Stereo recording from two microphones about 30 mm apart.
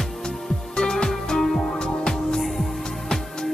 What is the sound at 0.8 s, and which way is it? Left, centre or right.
Music, centre.